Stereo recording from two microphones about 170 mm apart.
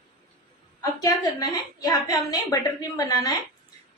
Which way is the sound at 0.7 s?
20° left (ahead or behind).